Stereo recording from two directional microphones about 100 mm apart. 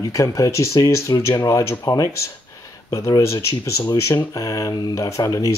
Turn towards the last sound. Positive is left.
turn(degrees=35)  # may be behind; listen again after turning